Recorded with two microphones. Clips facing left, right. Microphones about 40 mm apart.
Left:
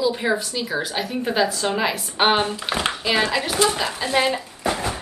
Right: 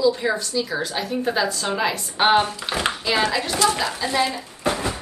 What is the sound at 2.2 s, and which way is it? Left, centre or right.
Speech, left.